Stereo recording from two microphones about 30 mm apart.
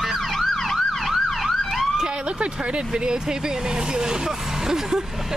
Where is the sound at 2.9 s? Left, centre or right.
Right.